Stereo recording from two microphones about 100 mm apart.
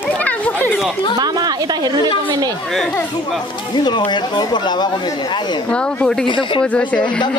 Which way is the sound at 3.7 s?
50° left (ahead or behind).